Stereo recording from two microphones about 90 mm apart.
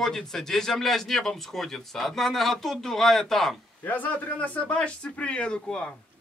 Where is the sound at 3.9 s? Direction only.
20° left (ahead or behind).